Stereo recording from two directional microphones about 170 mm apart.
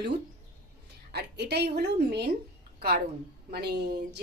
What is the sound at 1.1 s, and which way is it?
A woman's voice, 75° right (ahead or behind).